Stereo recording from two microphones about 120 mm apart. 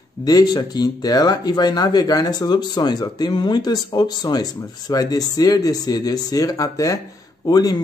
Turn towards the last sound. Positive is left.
turn(degrees=30)  # may be behind; listen again after turning